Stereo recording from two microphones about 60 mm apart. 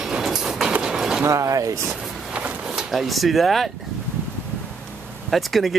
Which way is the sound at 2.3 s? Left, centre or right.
Right.